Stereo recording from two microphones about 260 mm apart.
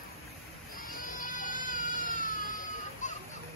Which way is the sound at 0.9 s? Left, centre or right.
Left.